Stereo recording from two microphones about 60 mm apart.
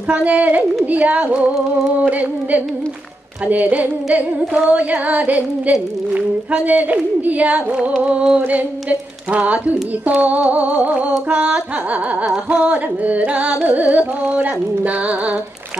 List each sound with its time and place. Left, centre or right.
0.1 s music: right